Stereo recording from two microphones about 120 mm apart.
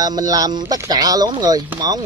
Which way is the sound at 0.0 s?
30° right (ahead or behind).